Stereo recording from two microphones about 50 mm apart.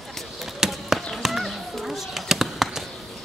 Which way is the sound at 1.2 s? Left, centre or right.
Centre.